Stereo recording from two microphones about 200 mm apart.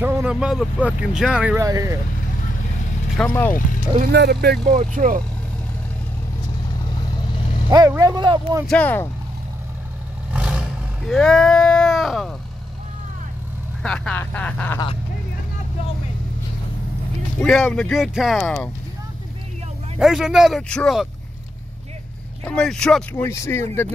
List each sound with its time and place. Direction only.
0.0 s speech: 5° right (ahead or behind)
1.6 s speech: 15° right (ahead or behind)
3.2 s speech: 10° left (ahead or behind)
4.1 s speech: 55° right (ahead or behind)
4.7 s speech: 40° right (ahead or behind)
7.7 s speech: 20° right (ahead or behind)
8.6 s speech: 5° left (ahead or behind)
10.3 s vehicle: 5° right (ahead or behind)
11.1 s speech: 5° left (ahead or behind)
13.8 s speech: 5° left (ahead or behind)
17.4 s speech: centre (ahead or behind)
20.0 s speech: centre (ahead or behind)
22.4 s speech: 5° left (ahead or behind)